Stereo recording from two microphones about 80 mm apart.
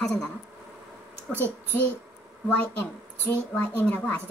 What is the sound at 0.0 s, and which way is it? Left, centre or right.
Speech, centre.